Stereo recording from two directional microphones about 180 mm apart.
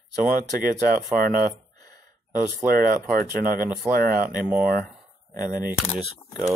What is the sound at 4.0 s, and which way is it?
Speech, 55° right (ahead or behind).